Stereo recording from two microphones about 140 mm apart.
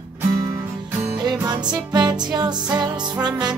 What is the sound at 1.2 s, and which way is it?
Music, 30° right (ahead or behind).